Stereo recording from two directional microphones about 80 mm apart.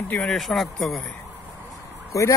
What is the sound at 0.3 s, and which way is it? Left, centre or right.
Speech, centre.